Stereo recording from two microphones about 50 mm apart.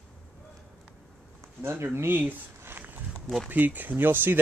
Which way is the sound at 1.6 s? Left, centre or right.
Right.